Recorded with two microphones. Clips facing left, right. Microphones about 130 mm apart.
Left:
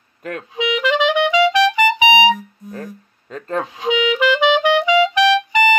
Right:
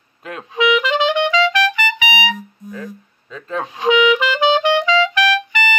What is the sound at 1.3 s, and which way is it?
Music, 20° left (ahead or behind).